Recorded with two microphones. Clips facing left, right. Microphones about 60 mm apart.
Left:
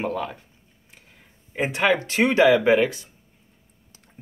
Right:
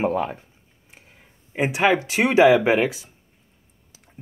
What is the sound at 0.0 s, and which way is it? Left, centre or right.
Speech, right.